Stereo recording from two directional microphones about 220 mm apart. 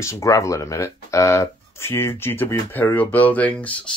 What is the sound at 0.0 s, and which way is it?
Speech, 15° left (ahead or behind).